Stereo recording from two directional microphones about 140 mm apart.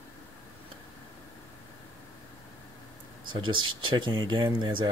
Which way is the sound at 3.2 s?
35° right (ahead or behind).